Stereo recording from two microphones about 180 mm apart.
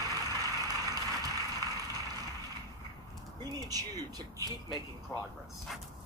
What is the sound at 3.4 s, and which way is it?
Speech, 20° right (ahead or behind).